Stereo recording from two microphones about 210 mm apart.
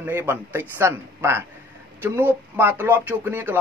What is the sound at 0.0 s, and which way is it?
Speech, 10° right (ahead or behind).